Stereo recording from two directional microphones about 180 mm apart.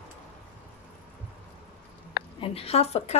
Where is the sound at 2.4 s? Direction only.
35° left (ahead or behind).